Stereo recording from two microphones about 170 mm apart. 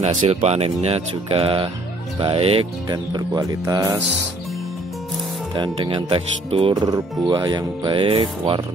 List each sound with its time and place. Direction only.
0.0 s speech: 40° right (ahead or behind)
2.1 s music: 35° right (ahead or behind)
5.5 s speech: 25° right (ahead or behind)
6.7 s music: 20° right (ahead or behind)